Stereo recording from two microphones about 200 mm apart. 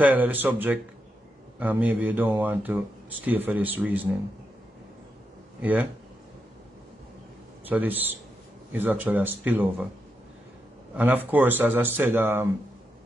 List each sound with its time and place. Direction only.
0.0 s speech: 10° right (ahead or behind)
5.6 s speech: 5° right (ahead or behind)
7.6 s speech: 10° right (ahead or behind)
11.0 s speech: 10° right (ahead or behind)